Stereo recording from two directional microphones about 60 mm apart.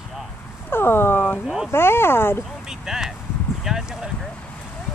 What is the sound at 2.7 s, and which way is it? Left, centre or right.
Speech, centre.